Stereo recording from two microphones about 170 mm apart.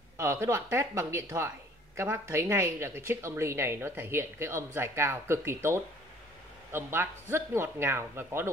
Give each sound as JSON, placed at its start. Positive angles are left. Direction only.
{"t": 0.2, "sound": "speech", "side_deg": -15}